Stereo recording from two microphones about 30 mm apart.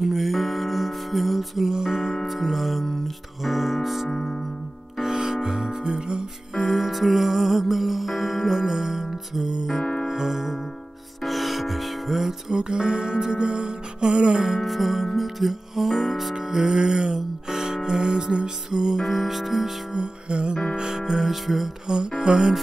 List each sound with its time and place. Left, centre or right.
0.1 s music: centre
1.7 s music: centre
5.0 s music: centre
6.5 s music: centre
11.2 s music: centre
12.4 s music: right
14.6 s music: centre
16.5 s music: centre
18.9 s music: centre
19.9 s music: right
20.9 s music: centre
21.8 s music: right